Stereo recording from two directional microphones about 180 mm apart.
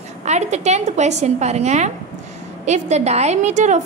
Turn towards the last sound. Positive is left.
turn(degrees=-40)  # may be behind; listen again after turning